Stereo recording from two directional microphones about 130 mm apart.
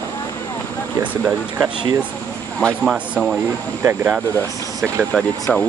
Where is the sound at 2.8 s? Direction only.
Centre (ahead or behind).